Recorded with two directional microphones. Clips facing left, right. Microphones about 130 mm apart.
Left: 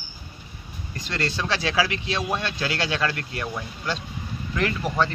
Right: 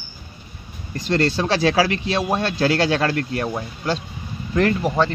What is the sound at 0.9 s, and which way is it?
Speech, 35° right (ahead or behind).